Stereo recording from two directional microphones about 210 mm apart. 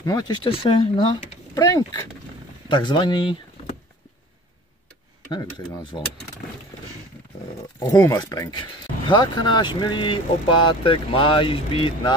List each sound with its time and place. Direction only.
0.0 s speech: 20° left (ahead or behind)
5.3 s speech: 20° left (ahead or behind)
7.8 s speech: 15° left (ahead or behind)